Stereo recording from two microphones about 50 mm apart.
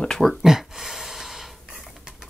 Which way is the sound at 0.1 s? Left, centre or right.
Centre.